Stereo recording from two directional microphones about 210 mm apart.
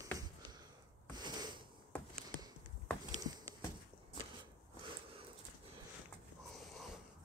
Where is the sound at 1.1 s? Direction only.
20° right (ahead or behind).